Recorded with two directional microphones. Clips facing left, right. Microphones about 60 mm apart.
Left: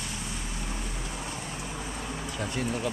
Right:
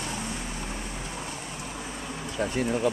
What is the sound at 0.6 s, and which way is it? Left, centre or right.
Boat, centre.